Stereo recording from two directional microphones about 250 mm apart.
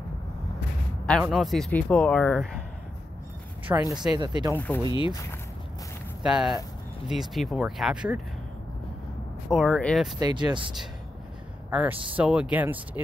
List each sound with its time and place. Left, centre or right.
1.2 s speech: centre
3.7 s speech: centre
4.6 s speech: centre
4.9 s speech: centre
6.2 s speech: centre
9.5 s speech: centre
10.1 s speech: centre
11.7 s speech: centre